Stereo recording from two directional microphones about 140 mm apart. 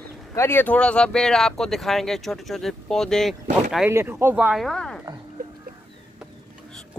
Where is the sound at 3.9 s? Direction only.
20° right (ahead or behind); by 5.0 s 5° left (ahead or behind).